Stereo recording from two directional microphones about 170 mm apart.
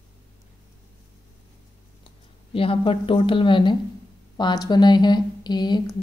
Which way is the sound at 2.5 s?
30° left (ahead or behind).